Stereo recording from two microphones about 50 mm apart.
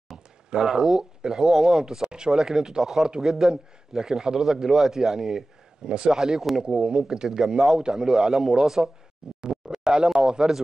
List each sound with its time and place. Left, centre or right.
0.5 s speech: centre